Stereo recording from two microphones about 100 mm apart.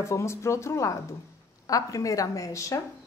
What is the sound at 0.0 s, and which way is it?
A woman's voice, 30° left (ahead or behind).